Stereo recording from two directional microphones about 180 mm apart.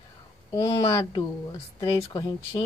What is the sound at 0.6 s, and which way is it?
Speech, 20° left (ahead or behind).